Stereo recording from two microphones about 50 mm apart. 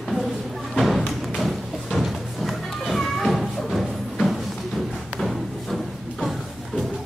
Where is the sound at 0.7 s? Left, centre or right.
Centre.